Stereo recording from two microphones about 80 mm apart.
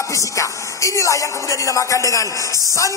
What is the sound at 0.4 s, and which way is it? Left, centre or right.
Speech, left.